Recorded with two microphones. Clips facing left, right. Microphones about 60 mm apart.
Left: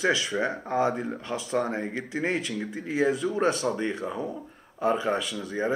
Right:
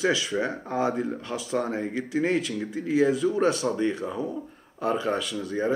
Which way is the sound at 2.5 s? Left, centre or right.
Left.